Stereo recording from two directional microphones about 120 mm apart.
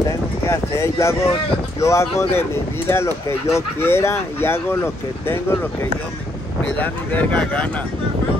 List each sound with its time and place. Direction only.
0.5 s speech: 20° left (ahead or behind)
6.6 s speech: 10° left (ahead or behind)